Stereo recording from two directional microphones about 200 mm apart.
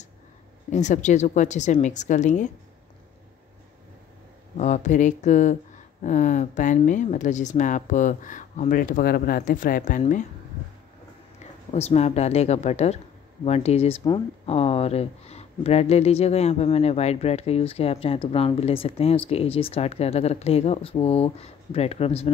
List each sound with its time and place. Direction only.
0.7 s speech: 35° left (ahead or behind)
4.6 s speech: 35° left (ahead or behind)
11.7 s speech: 30° left (ahead or behind)